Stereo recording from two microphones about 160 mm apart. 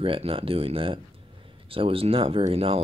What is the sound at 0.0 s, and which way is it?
Speech, 35° right (ahead or behind).